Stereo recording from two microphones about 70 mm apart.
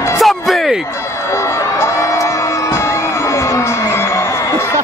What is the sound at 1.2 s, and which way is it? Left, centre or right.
Crowd, left.